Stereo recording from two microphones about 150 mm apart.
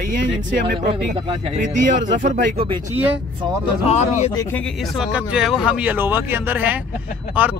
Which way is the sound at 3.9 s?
45° left (ahead or behind).